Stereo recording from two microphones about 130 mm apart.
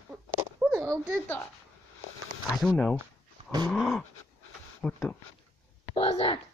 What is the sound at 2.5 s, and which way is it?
Speech, centre (ahead or behind).